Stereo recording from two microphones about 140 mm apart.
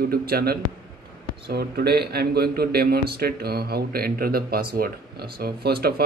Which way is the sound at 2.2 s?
90° right.